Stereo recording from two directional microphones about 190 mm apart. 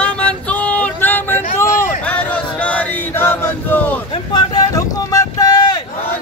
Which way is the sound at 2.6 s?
10° left (ahead or behind).